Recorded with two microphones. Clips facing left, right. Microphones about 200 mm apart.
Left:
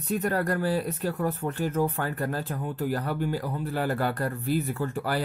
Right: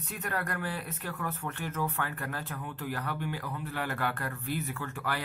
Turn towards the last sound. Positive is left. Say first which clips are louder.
# left 7 dB
turn(degrees=35)  # may be behind; listen again after turning